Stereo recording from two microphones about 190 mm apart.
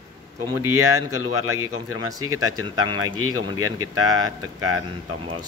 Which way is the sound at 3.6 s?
90° right.